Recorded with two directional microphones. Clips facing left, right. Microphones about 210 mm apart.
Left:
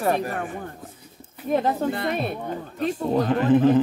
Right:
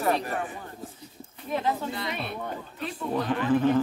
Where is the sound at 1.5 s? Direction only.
45° left (ahead or behind).